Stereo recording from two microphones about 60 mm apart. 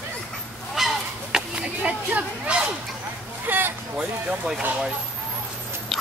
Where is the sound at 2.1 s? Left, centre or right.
Centre.